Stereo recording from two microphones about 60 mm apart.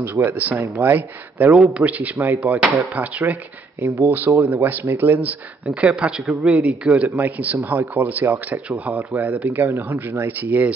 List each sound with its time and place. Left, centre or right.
0.0 s speech: right